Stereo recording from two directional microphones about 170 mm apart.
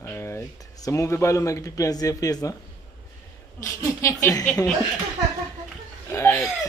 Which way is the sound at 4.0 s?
20° left (ahead or behind).